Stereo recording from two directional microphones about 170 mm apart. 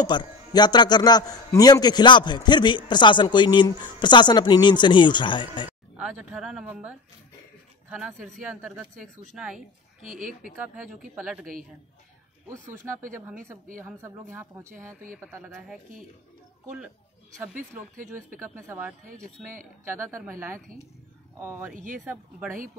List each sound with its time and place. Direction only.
0.0 s a man's voice: 25° left (ahead or behind)
5.9 s speech: 5° right (ahead or behind)
10.0 s a woman's voice: 50° right (ahead or behind)
13.7 s speech: 15° right (ahead or behind)
18.4 s speech: 15° right (ahead or behind)
21.7 s a woman's voice: 50° right (ahead or behind)
22.0 s speech: 10° right (ahead or behind)